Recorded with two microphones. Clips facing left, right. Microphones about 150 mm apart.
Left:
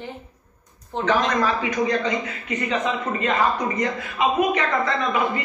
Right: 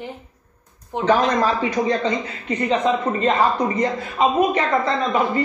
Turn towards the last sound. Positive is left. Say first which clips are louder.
# right 3 dB
turn(degrees=-30)  # may be behind; listen again after turning